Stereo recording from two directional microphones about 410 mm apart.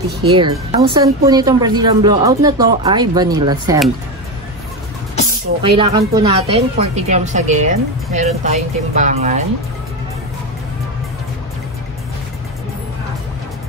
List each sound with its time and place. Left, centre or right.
0.3 s speech: centre
5.6 s speech: centre